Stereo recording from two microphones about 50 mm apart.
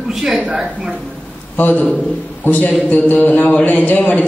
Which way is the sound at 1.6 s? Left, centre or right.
Left.